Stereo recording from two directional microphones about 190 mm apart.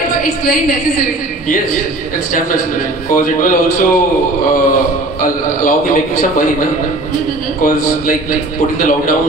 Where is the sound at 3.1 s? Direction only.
45° left (ahead or behind).